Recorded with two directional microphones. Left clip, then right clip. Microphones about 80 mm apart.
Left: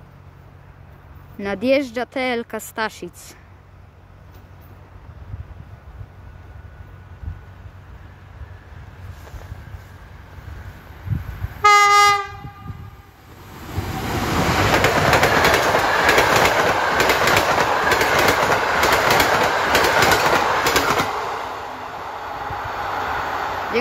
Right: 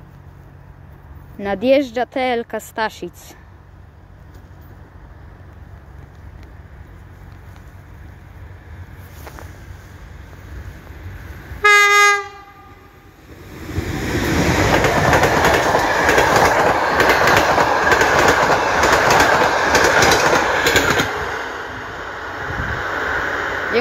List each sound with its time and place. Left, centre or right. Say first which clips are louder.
1.4 s speech: right 4 dB; left
11.5 s train: right 1 dB; left
13.4 s waves: right 3 dB; centre
15.8 s train: right 1 dB; centre; by 23.8 s left